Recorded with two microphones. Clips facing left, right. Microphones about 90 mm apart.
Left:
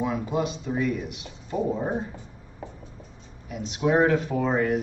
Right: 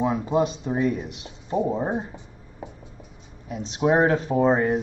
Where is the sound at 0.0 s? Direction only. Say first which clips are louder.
Right 4 dB; 30° right (ahead or behind).